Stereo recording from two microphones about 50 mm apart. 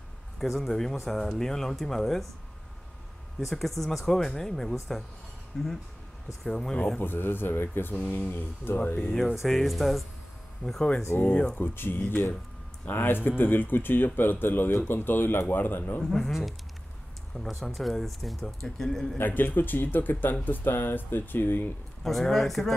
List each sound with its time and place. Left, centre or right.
0.4 s speech: centre
3.3 s speech: centre
7.0 s speech: left
9.1 s speech: centre
10.6 s speech: centre
11.1 s speech: left
11.5 s speech: left
16.0 s speech: centre
17.5 s speech: centre
19.1 s speech: left
22.0 s speech: centre